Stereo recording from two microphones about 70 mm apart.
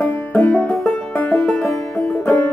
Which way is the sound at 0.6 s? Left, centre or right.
Left.